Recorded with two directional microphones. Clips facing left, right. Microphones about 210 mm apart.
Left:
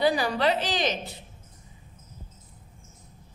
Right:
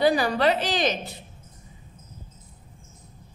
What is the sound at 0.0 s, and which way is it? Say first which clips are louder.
Speech: right 3 dB; 45° right (ahead or behind).